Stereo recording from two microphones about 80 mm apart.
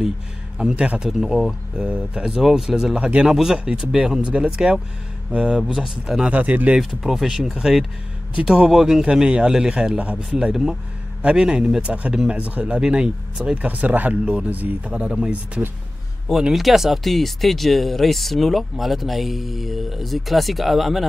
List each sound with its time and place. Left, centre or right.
0.6 s speech: centre
6.3 s speech: centre
7.0 s speech: centre